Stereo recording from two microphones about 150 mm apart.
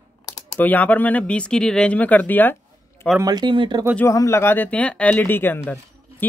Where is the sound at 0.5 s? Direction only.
10° left (ahead or behind).